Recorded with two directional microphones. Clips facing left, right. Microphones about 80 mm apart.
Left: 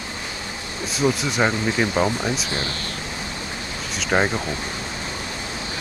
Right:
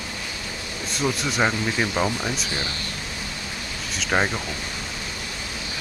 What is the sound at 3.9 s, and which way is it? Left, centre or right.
Speech, centre.